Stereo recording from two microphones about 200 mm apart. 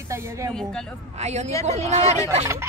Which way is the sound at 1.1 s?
35° right (ahead or behind).